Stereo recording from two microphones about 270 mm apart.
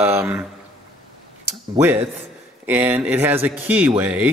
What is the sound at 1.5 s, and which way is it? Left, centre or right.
A man's voice, centre.